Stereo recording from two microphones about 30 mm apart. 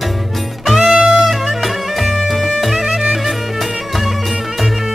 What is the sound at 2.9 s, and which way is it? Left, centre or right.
Music, centre.